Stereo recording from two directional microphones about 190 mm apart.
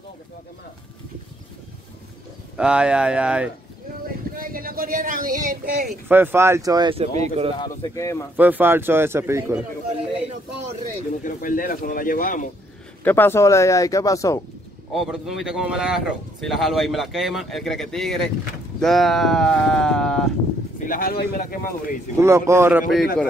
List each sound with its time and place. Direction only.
2.5 s a man's voice: 5° right (ahead or behind)
4.3 s speech: 50° right (ahead or behind)
5.9 s speech: 10° right (ahead or behind); by 7.5 s 30° right (ahead or behind)
7.5 s speech: 20° left (ahead or behind)
8.4 s speech: 10° right (ahead or behind)
11.2 s a man's voice: 45° left (ahead or behind)
13.0 s speech: 10° left (ahead or behind)
14.9 s a man's voice: centre (ahead or behind)
20.8 s a man's voice: 50° left (ahead or behind)
22.2 s speech: 15° right (ahead or behind)